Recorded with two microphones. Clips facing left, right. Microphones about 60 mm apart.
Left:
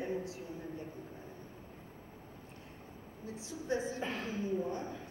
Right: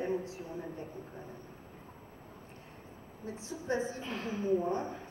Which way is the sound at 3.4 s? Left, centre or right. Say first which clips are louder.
Right 2 dB; right.